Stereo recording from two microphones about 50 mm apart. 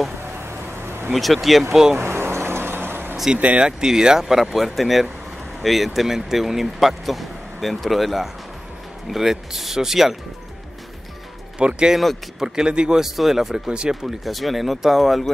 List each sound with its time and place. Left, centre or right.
0.2 s vehicle: right
1.1 s speech: centre
2.0 s vehicle: right
3.3 s speech: right
3.6 s speech: centre
11.5 s speech: centre
13.0 s speech: centre
13.7 s speech: centre
14.0 s speech: centre